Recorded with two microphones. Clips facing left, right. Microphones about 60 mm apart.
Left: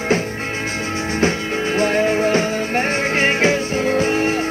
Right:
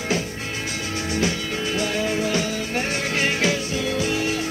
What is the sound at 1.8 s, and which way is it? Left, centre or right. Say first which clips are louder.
Music: left 8 dB; left.